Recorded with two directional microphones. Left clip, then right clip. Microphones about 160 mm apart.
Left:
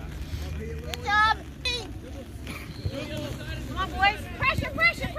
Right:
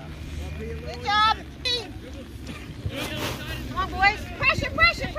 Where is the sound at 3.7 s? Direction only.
40° right (ahead or behind).